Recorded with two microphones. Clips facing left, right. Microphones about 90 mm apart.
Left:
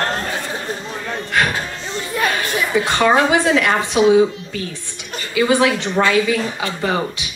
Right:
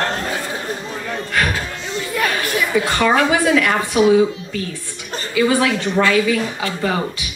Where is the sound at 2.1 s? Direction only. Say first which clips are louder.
Even; 25° left (ahead or behind).